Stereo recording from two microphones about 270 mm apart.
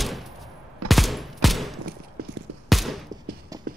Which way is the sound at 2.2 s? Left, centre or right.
Right.